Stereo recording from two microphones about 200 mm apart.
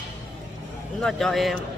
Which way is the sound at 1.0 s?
Centre (ahead or behind).